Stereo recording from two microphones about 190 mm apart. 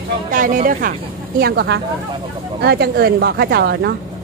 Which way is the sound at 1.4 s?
60° right (ahead or behind).